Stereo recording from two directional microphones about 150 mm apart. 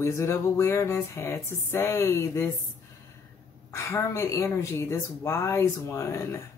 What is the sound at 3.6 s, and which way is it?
Speech, 20° left (ahead or behind).